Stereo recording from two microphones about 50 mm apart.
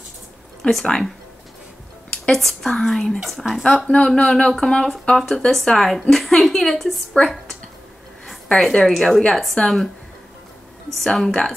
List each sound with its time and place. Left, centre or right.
0.6 s a woman's voice: centre
2.3 s a woman's voice: centre
3.3 s a woman's voice: centre
3.8 s speech: centre
4.1 s a woman's voice: centre
5.1 s a woman's voice: centre
8.7 s a woman's voice: centre
11.1 s a woman's voice: centre